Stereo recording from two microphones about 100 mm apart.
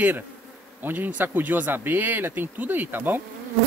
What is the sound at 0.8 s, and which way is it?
Speech, 20° right (ahead or behind).